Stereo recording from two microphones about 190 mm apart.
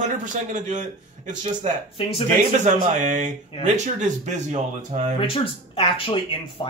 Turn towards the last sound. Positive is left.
turn(degrees=25)  # may be behind; listen again after turning